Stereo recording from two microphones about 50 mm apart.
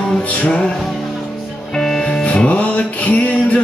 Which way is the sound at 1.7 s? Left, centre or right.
Centre.